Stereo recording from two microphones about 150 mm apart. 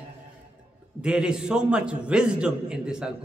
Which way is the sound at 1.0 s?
5° right (ahead or behind).